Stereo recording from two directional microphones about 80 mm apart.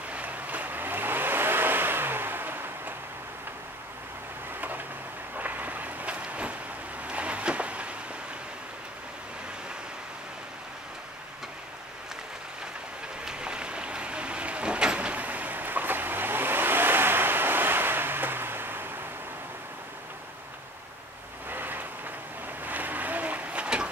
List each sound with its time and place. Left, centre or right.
0.1 s vehicle: centre
4.6 s a sound: right
13.2 s vehicle: centre; by 18.9 s right
21.5 s vehicle: right
22.6 s boat: right